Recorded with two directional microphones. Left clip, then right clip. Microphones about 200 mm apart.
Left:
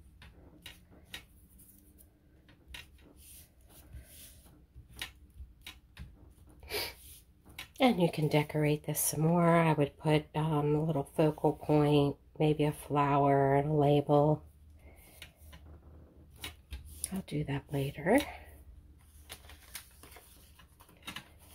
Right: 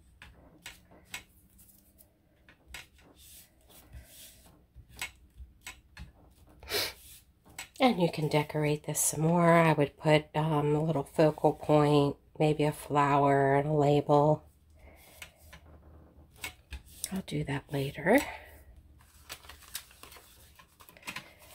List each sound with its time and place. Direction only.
6.6 s gasp: 20° right (ahead or behind)
7.7 s speech: centre (ahead or behind)
17.0 s speech: 5° right (ahead or behind)
21.0 s a sound: 25° right (ahead or behind)